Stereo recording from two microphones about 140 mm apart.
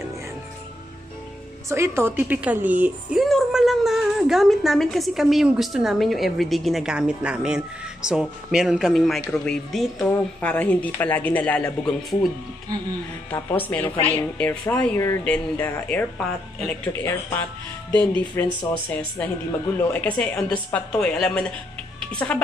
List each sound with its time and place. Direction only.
1.7 s a woman's voice: 20° right (ahead or behind)
3.2 s a woman's voice: centre (ahead or behind)
13.3 s speech: 15° left (ahead or behind)
17.0 s a woman's voice: 20° left (ahead or behind)
22.1 s music: 5° left (ahead or behind)